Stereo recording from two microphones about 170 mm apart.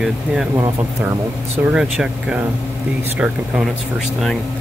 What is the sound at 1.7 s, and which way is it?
Speech, 5° right (ahead or behind).